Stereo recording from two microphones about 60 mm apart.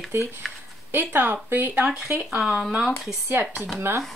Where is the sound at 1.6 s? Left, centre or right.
Right.